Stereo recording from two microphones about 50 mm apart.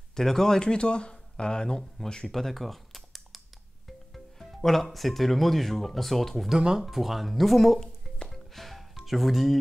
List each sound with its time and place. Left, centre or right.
0.1 s speech: centre
2.3 s computer keyboard: centre
4.1 s speech: centre
6.5 s speech: centre
8.3 s music: centre